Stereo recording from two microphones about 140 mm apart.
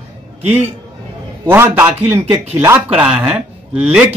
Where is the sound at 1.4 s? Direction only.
15° right (ahead or behind).